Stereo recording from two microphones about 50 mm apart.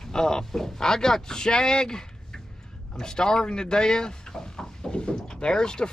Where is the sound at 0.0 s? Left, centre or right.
Centre.